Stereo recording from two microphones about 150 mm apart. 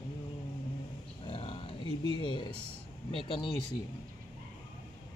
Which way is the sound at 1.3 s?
35° left (ahead or behind).